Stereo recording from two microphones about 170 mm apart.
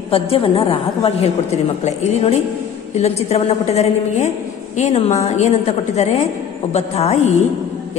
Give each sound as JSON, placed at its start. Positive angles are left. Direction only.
{"t": 0.1, "sound": "a woman's voice", "side_deg": 35}